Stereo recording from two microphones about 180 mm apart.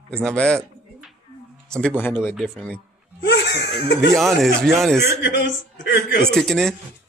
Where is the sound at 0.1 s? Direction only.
5° left (ahead or behind).